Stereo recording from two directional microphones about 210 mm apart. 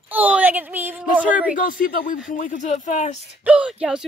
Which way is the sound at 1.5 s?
40° left (ahead or behind).